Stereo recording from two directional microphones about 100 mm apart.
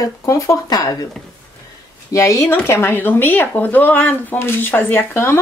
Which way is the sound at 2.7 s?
20° left (ahead or behind).